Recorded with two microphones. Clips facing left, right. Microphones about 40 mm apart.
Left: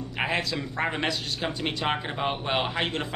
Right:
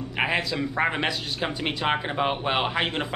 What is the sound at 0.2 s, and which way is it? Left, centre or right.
Speech, centre.